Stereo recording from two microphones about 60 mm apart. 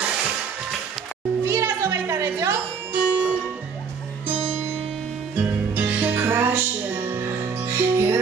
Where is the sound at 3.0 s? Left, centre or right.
Right.